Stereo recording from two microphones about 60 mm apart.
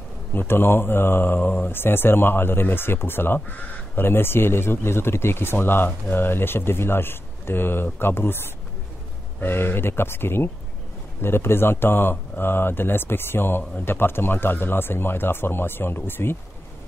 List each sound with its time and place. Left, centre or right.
0.3 s speech: left
3.3 s speech: left